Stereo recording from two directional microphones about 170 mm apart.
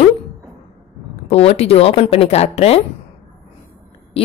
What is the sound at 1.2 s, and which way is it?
A woman's voice, 35° left (ahead or behind).